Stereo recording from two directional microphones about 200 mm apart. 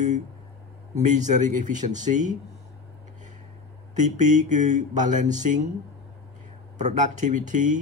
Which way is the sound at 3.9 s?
40° right (ahead or behind).